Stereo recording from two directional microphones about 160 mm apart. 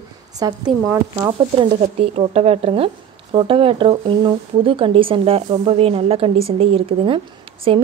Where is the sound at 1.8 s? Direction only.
40° right (ahead or behind).